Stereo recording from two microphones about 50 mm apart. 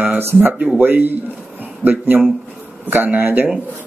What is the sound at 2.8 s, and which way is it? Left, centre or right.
Speech, right.